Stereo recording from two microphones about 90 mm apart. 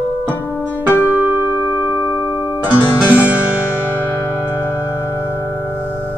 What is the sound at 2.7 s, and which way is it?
Music, 20° right (ahead or behind).